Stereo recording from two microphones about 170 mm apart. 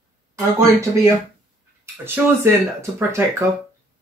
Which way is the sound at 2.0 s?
15° right (ahead or behind).